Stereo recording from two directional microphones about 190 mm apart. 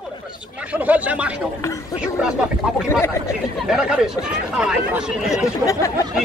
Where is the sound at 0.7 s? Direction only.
10° right (ahead or behind).